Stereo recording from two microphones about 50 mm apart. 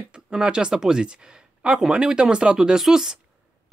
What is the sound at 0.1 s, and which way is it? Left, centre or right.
Speech, centre.